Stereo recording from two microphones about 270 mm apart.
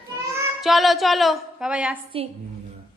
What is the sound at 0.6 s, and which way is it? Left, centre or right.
A woman's voice, centre.